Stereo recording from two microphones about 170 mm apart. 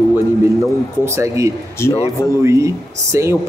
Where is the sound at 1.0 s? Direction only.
15° right (ahead or behind).